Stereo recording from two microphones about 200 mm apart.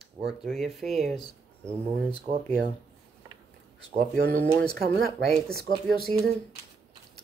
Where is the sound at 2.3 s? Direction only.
25° right (ahead or behind).